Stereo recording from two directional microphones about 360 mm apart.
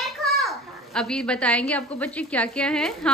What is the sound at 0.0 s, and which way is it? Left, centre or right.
A child's voice, centre.